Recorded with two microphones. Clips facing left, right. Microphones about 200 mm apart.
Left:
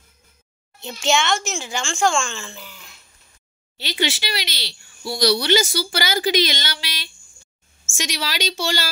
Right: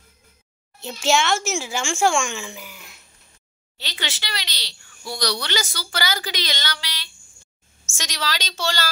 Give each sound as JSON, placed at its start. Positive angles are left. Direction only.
{"t": 0.7, "sound": "speech", "side_deg": -5}
{"t": 3.8, "sound": "a woman's voice", "side_deg": 15}